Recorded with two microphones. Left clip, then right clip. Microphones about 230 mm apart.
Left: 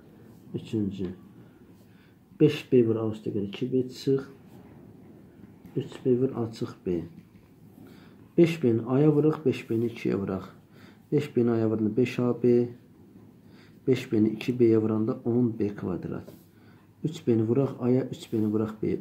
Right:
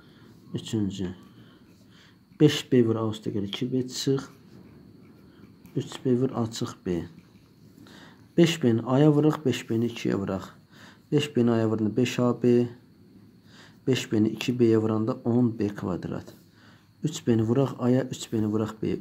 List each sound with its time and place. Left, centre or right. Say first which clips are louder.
0.5 s speech: right 1 dB; right
2.3 s speech: even; right
5.8 s speech: left 1 dB; right
8.4 s speech: even; right
13.8 s speech: even; right